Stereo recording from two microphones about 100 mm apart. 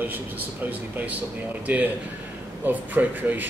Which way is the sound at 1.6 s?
15° right (ahead or behind).